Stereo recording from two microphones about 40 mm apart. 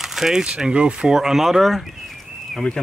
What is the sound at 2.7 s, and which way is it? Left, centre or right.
Speech, left.